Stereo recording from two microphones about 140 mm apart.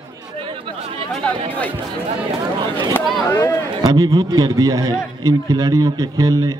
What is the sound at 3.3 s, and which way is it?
Speech, 20° left (ahead or behind).